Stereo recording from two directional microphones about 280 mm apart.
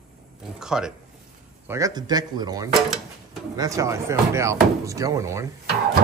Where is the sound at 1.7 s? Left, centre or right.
Centre.